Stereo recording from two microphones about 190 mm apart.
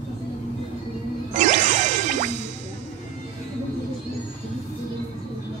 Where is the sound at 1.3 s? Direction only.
40° right (ahead or behind).